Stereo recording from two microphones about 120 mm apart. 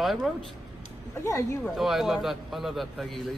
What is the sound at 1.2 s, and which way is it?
Speech, 25° left (ahead or behind).